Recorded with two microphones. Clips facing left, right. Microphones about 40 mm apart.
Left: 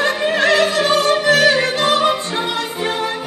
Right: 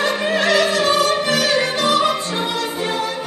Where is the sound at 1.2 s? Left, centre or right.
Left.